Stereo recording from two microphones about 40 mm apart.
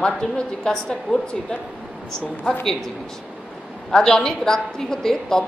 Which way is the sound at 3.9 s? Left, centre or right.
Centre.